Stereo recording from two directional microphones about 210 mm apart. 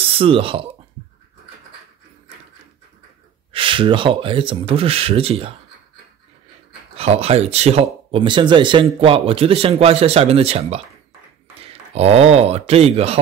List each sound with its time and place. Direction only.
0.2 s speech: 25° right (ahead or behind)
3.5 s speech: 25° right (ahead or behind)
7.0 s speech: 30° right (ahead or behind)